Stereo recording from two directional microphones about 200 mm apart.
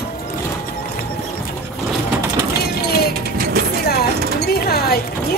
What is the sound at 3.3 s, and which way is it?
Vehicle, 50° right (ahead or behind).